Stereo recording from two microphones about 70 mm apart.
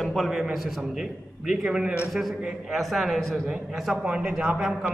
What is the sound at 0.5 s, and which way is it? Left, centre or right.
A man's voice, centre.